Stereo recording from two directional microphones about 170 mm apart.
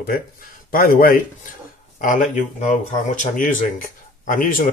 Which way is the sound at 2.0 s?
50° left (ahead or behind).